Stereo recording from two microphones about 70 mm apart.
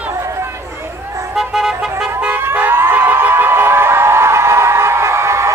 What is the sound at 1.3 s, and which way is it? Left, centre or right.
Vehicle, centre.